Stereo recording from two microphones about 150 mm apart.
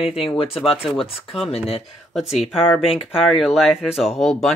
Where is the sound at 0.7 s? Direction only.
Centre (ahead or behind).